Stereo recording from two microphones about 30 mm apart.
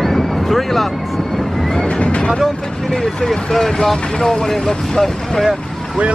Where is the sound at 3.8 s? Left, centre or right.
Centre.